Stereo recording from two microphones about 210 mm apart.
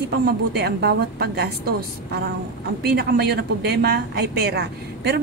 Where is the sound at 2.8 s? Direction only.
50° right (ahead or behind).